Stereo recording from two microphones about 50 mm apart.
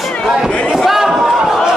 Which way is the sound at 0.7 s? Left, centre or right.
Centre.